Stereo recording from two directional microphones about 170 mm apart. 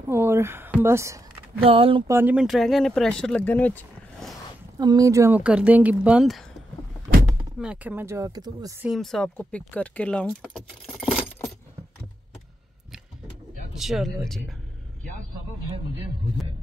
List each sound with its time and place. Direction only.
0.1 s speech: 15° right (ahead or behind)
1.6 s speech: 35° right (ahead or behind)
2.0 s speech: 10° right (ahead or behind); by 4.4 s 5° left (ahead or behind)
4.7 s speech: 25° right (ahead or behind); by 6.4 s 5° right (ahead or behind)
7.5 s speech: 5° right (ahead or behind); by 8.7 s 25° right (ahead or behind)
8.8 s speech: centre (ahead or behind)
13.7 s speech: centre (ahead or behind)